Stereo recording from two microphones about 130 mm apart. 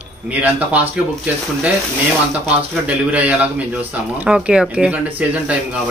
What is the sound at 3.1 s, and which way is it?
Speech, 10° right (ahead or behind).